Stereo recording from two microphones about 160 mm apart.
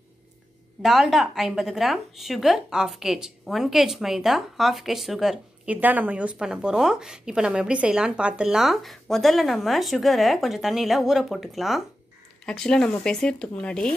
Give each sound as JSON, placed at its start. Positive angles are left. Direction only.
{"t": 0.8, "sound": "speech", "side_deg": 0}